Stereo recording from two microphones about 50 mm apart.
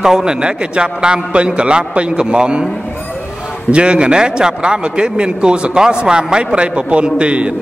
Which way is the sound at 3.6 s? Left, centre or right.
Right.